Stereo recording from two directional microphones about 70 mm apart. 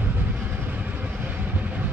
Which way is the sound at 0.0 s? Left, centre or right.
Right.